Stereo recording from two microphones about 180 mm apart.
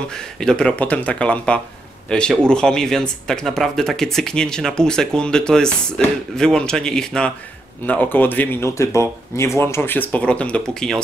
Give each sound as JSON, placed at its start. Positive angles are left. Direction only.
{"t": 0.1, "sound": "speech", "side_deg": 5}